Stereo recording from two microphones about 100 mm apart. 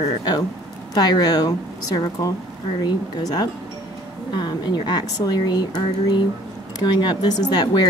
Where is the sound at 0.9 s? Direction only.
40° left (ahead or behind).